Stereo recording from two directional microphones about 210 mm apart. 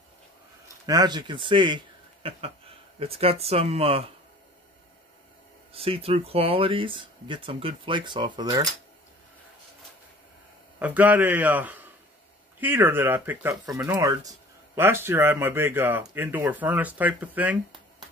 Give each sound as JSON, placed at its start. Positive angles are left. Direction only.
{"t": 0.8, "sound": "speech", "side_deg": -20}
{"t": 3.0, "sound": "speech", "side_deg": -25}
{"t": 5.7, "sound": "speech", "side_deg": -25}
{"t": 10.8, "sound": "speech", "side_deg": -10}